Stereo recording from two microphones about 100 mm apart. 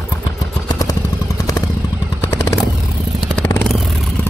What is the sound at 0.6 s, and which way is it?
Vehicle, 40° left (ahead or behind).